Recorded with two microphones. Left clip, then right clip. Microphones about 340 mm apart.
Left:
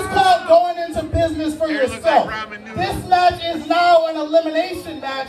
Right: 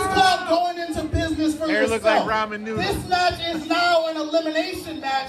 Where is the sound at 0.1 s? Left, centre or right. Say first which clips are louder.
Left 7 dB; left.